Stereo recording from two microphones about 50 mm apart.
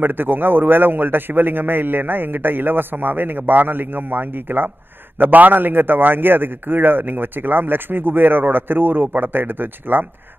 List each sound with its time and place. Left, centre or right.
0.0 s a man's voice: right